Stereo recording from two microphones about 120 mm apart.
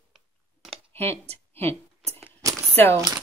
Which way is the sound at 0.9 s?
20° left (ahead or behind).